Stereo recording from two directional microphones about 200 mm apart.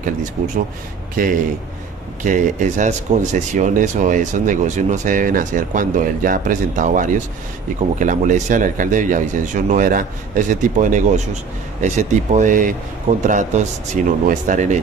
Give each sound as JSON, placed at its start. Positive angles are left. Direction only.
{"t": 1.2, "sound": "speech", "side_deg": -45}